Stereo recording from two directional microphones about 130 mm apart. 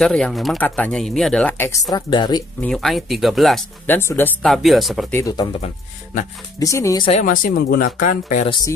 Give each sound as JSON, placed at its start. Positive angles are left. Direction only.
{"t": 0.0, "sound": "speech", "side_deg": 5}
{"t": 0.6, "sound": "speech", "side_deg": 10}
{"t": 1.7, "sound": "speech", "side_deg": 25}
{"t": 2.7, "sound": "speech", "side_deg": 0}
{"t": 3.8, "sound": "speech", "side_deg": 20}
{"t": 4.4, "sound": "speech", "side_deg": 0}
{"t": 5.1, "sound": "speech", "side_deg": 30}
{"t": 6.6, "sound": "speech", "side_deg": 25}
{"t": 7.1, "sound": "speech", "side_deg": 75}